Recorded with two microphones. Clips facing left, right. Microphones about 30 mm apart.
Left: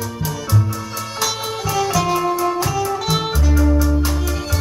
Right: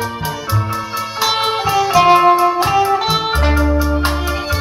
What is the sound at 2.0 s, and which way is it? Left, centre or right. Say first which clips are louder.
Music: right 9 dB; right.